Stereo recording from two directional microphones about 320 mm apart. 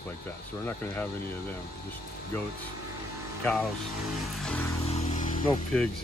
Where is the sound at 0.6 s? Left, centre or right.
Centre.